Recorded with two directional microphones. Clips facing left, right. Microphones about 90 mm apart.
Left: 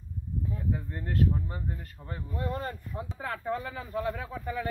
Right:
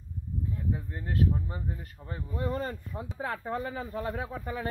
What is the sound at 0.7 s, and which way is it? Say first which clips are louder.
Speech: left 1 dB; 5° right (ahead or behind).